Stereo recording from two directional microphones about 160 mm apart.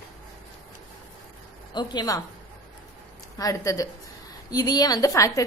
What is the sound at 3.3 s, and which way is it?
A woman's voice, 20° left (ahead or behind).